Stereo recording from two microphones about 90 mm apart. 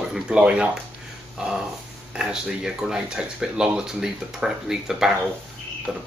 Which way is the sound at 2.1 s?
5° right (ahead or behind).